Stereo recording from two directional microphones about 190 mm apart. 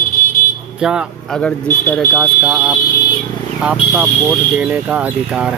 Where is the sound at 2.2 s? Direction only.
5° right (ahead or behind).